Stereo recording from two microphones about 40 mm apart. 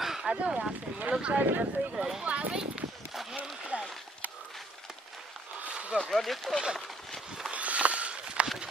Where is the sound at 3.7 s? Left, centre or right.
Right.